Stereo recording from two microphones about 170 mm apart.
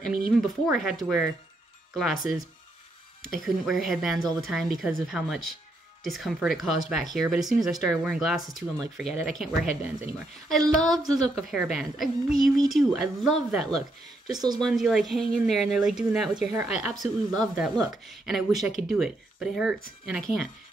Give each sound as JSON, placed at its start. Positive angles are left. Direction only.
{"t": 0.3, "sound": "a woman's voice", "side_deg": -5}
{"t": 17.0, "sound": "speech", "side_deg": -25}
{"t": 17.6, "sound": "a woman's voice", "side_deg": -5}